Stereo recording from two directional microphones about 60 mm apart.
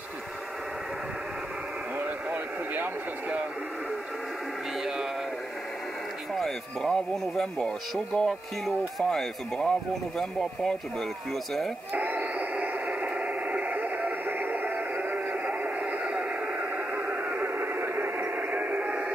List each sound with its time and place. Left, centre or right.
2.7 s speech: right
6.3 s speech: centre
11.9 s radio: right
13.5 s radio: right
16.9 s radio: right
17.7 s radio: right
18.5 s radio: right